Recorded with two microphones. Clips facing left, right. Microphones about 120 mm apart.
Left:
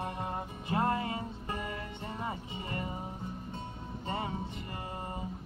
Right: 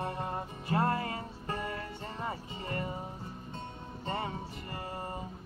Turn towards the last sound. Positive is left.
turn(degrees=15)  # may be behind; listen again after turning